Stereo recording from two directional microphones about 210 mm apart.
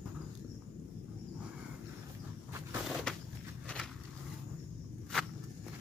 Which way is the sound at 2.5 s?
10° right (ahead or behind).